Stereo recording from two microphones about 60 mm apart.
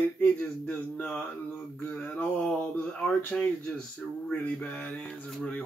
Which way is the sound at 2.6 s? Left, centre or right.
Left.